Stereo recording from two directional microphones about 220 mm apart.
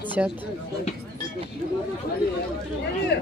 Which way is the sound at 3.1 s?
50° left (ahead or behind).